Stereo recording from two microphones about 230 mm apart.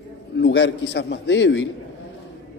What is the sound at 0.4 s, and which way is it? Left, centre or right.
A man's voice, left.